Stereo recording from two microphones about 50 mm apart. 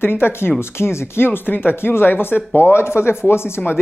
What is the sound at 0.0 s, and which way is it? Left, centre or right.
Speech, left.